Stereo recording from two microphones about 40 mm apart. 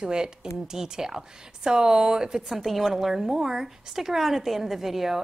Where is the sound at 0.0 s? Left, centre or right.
Centre.